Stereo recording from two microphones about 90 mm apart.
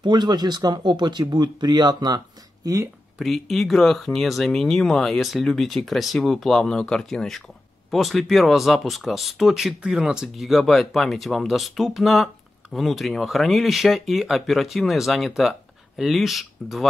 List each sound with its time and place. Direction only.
0.0 s speech: 55° right (ahead or behind)
3.2 s speech: centre (ahead or behind)